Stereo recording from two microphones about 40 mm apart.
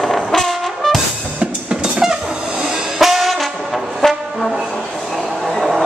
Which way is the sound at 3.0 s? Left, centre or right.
Centre.